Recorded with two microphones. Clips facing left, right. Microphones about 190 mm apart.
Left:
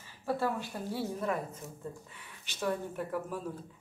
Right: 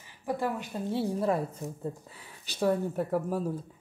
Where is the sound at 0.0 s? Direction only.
15° right (ahead or behind); by 3.5 s 40° right (ahead or behind).